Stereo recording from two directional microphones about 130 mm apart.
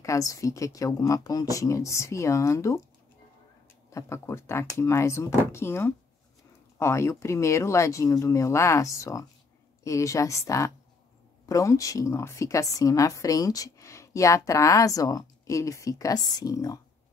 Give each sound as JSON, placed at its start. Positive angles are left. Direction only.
{"t": 0.0, "sound": "a woman's voice", "side_deg": 25}
{"t": 3.9, "sound": "a woman's voice", "side_deg": 20}